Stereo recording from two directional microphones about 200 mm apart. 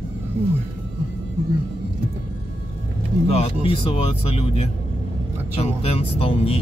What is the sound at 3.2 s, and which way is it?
Speech, 30° left (ahead or behind).